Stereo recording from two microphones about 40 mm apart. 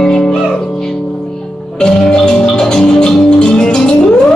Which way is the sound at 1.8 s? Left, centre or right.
Left.